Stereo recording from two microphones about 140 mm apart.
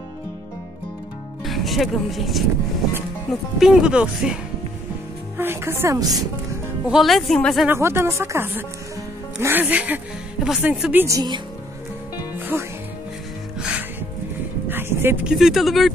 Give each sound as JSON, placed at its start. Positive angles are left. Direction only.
{"t": 1.4, "sound": "speech", "side_deg": 0}
{"t": 3.5, "sound": "speech", "side_deg": 0}
{"t": 5.4, "sound": "speech", "side_deg": -15}
{"t": 6.9, "sound": "speech", "side_deg": 0}
{"t": 7.6, "sound": "speech", "side_deg": -15}
{"t": 11.1, "sound": "speech", "side_deg": -30}
{"t": 13.6, "sound": "music", "side_deg": -5}
{"t": 14.7, "sound": "vehicle", "side_deg": -15}
{"t": 15.2, "sound": "speech", "side_deg": -5}